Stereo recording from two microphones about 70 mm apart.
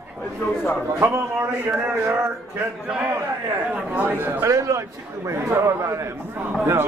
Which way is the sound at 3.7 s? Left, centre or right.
Right.